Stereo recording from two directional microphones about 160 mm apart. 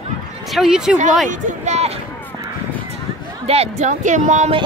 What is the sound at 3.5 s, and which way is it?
Speech, 40° right (ahead or behind).